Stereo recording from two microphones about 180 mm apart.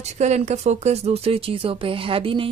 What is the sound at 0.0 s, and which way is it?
A woman's voice, 40° right (ahead or behind).